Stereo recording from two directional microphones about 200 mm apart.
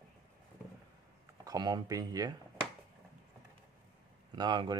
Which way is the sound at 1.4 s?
20° right (ahead or behind).